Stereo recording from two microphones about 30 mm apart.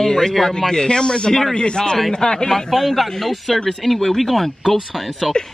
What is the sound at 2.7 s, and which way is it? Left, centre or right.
Speech, centre.